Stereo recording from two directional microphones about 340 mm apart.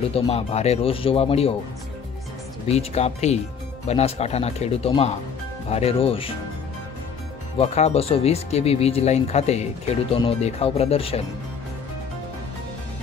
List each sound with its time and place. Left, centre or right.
0.1 s speech: centre
2.7 s speech: centre
7.5 s speech: centre